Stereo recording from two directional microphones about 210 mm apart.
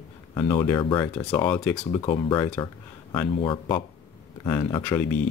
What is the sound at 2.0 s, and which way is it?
Speech, 20° left (ahead or behind).